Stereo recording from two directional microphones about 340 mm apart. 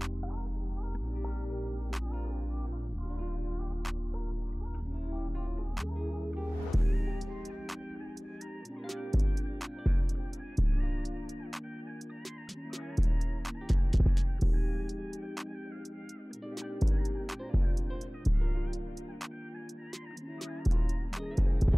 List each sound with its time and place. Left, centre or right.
5.8 s music: centre
8.8 s music: centre
13.7 s music: centre
16.5 s music: centre
20.6 s music: centre